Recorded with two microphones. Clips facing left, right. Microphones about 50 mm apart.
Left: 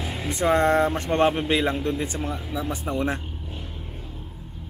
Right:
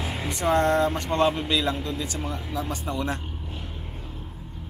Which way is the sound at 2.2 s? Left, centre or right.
Centre.